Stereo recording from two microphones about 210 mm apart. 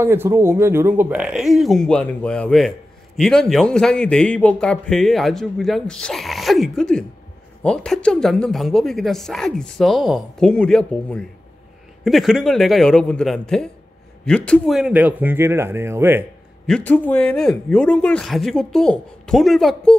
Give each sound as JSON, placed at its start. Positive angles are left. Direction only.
{"t": 0.0, "sound": "a man's voice", "side_deg": -10}
{"t": 16.6, "sound": "a man's voice", "side_deg": 5}